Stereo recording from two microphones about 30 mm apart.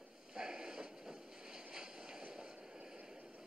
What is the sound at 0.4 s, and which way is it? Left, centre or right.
Vehicle, right.